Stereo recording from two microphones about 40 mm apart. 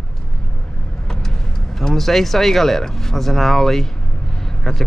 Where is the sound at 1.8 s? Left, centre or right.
Centre.